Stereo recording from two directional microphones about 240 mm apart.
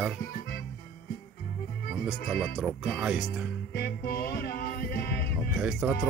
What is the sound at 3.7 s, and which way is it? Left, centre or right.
Music, left.